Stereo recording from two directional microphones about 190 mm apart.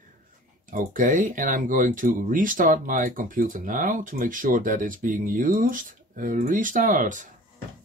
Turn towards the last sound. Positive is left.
turn(degrees=-40)  # may be behind; listen again after turning